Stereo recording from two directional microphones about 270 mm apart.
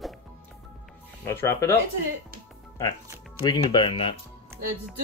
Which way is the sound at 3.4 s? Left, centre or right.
Centre.